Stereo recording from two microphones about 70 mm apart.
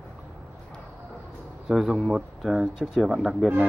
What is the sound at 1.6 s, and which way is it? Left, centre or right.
Speech, centre.